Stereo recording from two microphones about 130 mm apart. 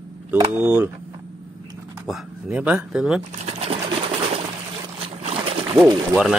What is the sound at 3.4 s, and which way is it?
Sewing machine, 50° right (ahead or behind).